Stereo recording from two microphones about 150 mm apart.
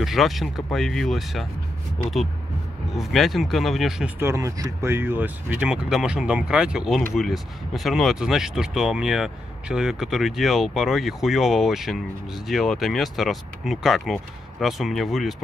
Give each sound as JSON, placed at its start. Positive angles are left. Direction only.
{"t": 0.0, "sound": "speech", "side_deg": 0}
{"t": 3.0, "sound": "speech", "side_deg": 0}
{"t": 4.2, "sound": "speech", "side_deg": -20}